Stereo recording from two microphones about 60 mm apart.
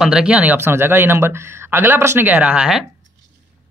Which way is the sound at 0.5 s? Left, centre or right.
Right.